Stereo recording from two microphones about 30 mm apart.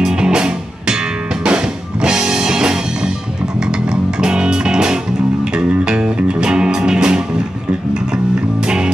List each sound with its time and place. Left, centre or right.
0.0 s music: right
4.2 s music: right
8.6 s music: right